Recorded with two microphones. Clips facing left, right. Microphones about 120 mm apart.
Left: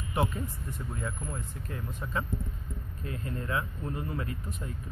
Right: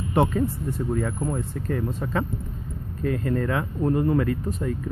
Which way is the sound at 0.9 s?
55° right (ahead or behind).